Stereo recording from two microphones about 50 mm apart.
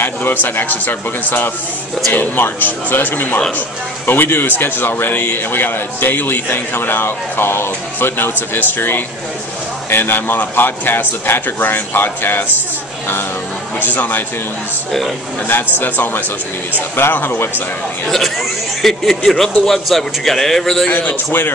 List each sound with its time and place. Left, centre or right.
0.0 s a man's voice: left
13.7 s a man's voice: left
14.9 s a man's voice: centre
15.4 s a man's voice: left
18.0 s a man's voice: centre
20.9 s a man's voice: left